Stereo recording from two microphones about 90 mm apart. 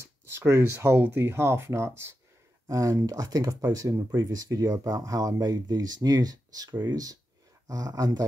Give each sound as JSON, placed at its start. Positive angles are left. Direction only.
{"t": 0.3, "sound": "speech", "side_deg": -30}
{"t": 4.1, "sound": "speech", "side_deg": -45}